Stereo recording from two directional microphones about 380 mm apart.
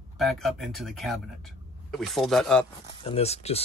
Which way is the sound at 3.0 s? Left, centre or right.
Centre.